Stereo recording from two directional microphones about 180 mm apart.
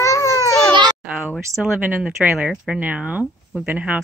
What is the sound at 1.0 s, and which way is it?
Speech, 10° right (ahead or behind).